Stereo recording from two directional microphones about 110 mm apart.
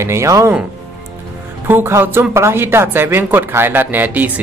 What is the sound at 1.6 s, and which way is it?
Speech, 20° right (ahead or behind).